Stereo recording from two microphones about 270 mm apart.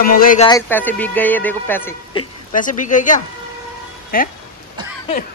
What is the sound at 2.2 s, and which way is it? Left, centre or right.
Speech, centre.